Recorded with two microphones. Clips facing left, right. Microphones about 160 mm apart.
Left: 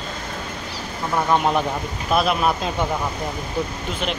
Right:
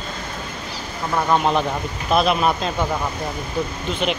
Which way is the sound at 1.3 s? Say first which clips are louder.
Right 1 dB; 10° left (ahead or behind).